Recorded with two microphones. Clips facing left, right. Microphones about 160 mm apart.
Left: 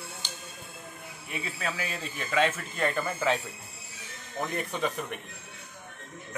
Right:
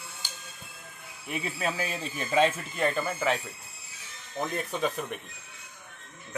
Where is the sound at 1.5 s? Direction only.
30° right (ahead or behind).